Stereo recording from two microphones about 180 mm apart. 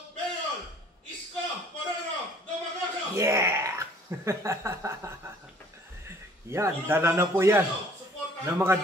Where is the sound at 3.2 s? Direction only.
15° right (ahead or behind).